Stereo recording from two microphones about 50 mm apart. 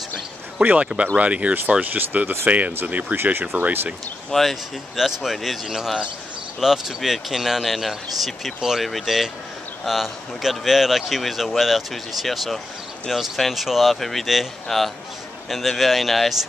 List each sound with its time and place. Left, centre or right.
0.6 s speech: right
4.3 s speech: centre